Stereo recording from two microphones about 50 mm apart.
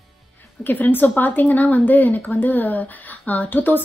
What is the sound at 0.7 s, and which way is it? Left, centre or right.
A woman's voice, left.